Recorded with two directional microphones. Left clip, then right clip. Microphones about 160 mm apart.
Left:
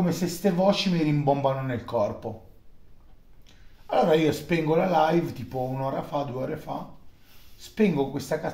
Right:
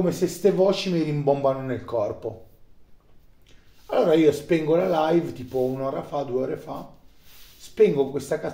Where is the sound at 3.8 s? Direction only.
35° right (ahead or behind).